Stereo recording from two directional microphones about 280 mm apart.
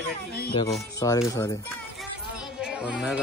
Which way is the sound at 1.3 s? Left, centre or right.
Centre.